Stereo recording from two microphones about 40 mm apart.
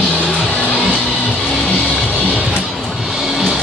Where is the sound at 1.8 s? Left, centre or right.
Left.